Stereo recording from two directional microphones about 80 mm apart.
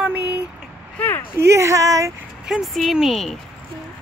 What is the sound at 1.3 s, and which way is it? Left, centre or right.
Speech, right.